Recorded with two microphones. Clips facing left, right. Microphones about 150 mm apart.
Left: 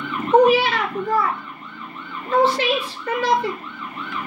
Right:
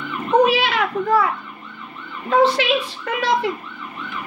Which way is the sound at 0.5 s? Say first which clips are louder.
Left 2 dB; 80° right.